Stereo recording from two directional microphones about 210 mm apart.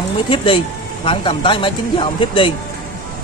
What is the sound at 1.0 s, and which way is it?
Speech, 25° left (ahead or behind).